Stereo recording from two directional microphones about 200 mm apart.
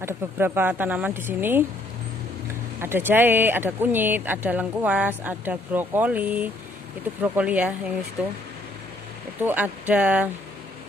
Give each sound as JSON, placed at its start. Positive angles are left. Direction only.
{"t": 0.0, "sound": "speech", "side_deg": -10}
{"t": 2.8, "sound": "speech", "side_deg": -10}
{"t": 9.4, "sound": "speech", "side_deg": -10}